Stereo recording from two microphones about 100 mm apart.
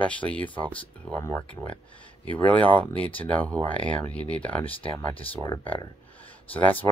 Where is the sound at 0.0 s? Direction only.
10° left (ahead or behind).